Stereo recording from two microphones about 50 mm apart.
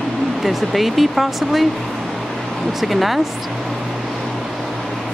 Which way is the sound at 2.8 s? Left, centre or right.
Centre.